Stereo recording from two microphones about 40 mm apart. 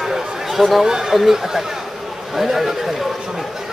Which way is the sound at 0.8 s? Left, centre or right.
Centre.